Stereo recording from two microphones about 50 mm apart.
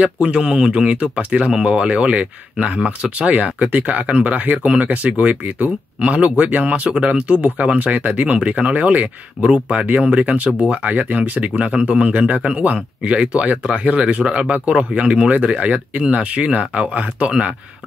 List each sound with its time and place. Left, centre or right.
0.0 s speech: centre